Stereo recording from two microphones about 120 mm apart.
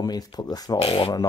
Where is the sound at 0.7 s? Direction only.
50° left (ahead or behind).